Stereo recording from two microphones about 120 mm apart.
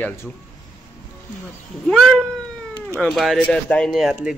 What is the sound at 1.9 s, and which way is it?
Speech, 5° left (ahead or behind).